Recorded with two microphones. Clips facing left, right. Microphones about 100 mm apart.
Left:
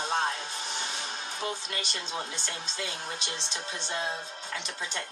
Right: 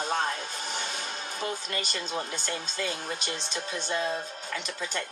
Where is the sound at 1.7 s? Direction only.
45° right (ahead or behind).